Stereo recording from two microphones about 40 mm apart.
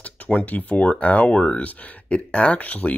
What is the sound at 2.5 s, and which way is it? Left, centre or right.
Speech, left.